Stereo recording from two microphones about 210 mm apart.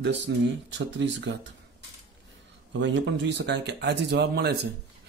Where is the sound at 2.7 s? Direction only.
60° right (ahead or behind).